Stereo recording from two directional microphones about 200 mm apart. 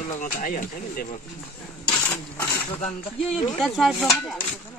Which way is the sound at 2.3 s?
15° left (ahead or behind).